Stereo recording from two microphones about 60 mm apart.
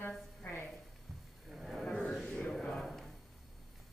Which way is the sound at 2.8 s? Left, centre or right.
Centre.